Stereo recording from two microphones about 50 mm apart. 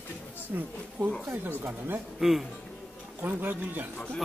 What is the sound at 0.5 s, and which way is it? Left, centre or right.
Speech, right.